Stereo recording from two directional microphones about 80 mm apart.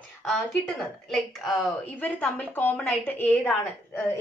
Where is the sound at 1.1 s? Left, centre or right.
Centre.